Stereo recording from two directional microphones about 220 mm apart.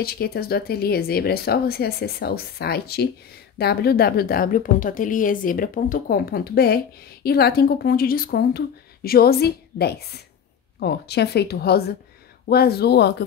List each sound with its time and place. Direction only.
0.0 s a woman's voice: 45° left (ahead or behind)